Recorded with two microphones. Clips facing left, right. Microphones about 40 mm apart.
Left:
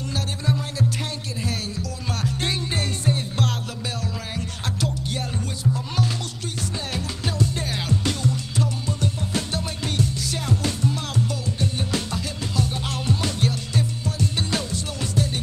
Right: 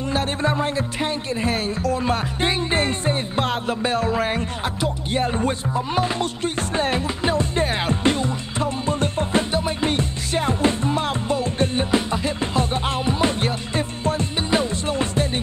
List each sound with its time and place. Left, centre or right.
0.1 s music: right
1.4 s speech: right
2.4 s music: right